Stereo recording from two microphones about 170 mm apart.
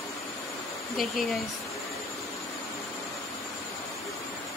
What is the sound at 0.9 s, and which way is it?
Speech, centre (ahead or behind).